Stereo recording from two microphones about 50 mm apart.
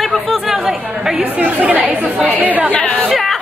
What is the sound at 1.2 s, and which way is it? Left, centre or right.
Speech, right.